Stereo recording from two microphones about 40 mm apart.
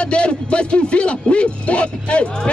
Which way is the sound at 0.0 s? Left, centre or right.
Left.